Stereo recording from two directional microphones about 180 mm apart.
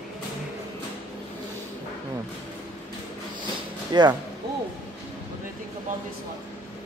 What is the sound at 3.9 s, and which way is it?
Speech, 25° right (ahead or behind).